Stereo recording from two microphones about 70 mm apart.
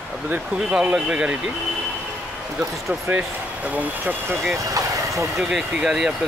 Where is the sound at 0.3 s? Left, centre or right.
Right.